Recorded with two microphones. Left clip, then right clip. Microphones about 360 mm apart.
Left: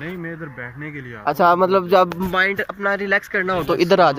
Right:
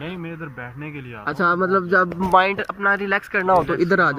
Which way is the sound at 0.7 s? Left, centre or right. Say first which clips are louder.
Left 2 dB; right.